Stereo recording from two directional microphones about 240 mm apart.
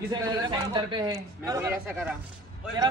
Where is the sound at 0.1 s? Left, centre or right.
Centre.